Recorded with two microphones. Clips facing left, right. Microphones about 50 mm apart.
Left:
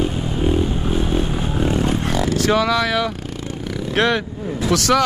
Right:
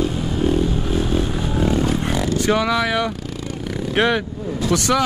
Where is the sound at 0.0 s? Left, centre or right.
Centre.